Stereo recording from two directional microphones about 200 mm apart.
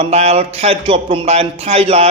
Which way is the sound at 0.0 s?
30° right (ahead or behind).